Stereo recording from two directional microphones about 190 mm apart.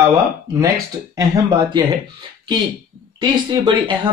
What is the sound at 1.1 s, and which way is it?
Speech, 20° right (ahead or behind).